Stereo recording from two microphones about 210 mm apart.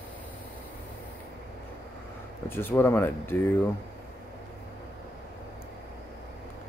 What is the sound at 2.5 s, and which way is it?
Speech, 10° left (ahead or behind).